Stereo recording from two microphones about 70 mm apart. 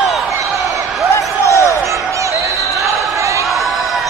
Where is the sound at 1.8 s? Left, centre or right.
Right.